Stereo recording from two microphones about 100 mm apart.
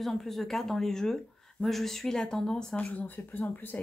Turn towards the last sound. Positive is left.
turn(degrees=15)  # may be behind; listen again after turning